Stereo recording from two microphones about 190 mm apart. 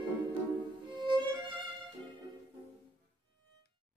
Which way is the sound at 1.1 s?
25° right (ahead or behind).